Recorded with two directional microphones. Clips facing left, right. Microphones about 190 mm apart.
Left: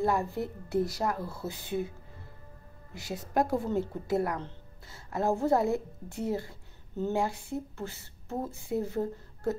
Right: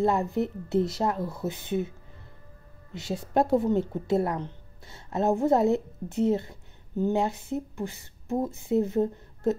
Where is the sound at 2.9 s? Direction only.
25° right (ahead or behind).